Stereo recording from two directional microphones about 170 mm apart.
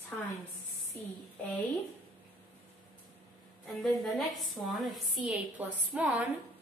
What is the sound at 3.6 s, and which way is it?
A woman's voice, centre (ahead or behind).